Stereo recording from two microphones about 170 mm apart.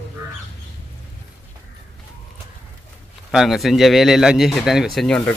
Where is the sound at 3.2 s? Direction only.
Centre (ahead or behind).